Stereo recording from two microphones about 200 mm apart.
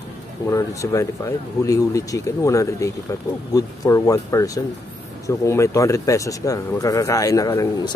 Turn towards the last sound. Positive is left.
turn(degrees=15)  # may be behind; listen again after turning